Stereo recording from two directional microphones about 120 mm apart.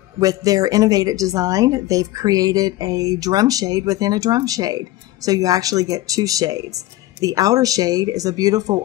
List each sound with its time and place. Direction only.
0.2 s a woman's voice: 30° right (ahead or behind)